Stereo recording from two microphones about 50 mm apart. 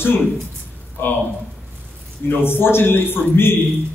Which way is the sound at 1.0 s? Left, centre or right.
Left.